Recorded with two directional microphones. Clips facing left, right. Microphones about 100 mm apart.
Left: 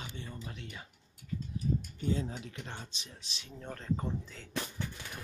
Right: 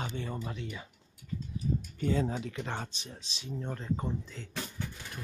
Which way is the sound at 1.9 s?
85° right.